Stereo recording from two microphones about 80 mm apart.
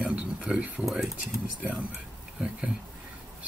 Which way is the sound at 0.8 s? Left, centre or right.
Centre.